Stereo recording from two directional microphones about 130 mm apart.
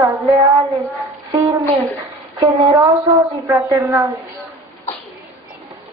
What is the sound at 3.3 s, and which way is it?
Speech, 25° right (ahead or behind).